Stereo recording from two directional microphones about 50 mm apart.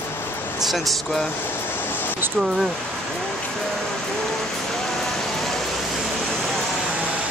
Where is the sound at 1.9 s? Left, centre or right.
Left.